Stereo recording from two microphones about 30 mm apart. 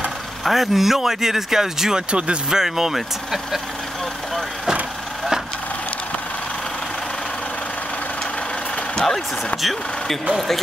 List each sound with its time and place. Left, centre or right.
0.5 s speech: centre
2.0 s speech: right
2.5 s speech: centre